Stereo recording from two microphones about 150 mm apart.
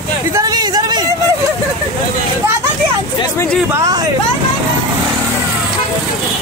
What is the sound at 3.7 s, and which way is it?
Hubbub, 25° right (ahead or behind).